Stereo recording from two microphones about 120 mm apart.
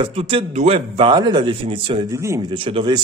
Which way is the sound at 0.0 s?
55° right (ahead or behind).